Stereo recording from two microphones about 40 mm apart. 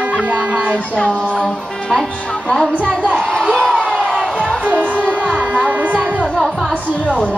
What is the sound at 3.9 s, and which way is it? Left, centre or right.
Crowd, centre.